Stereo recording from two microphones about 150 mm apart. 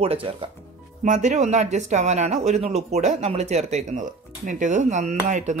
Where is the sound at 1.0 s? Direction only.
55° right (ahead or behind).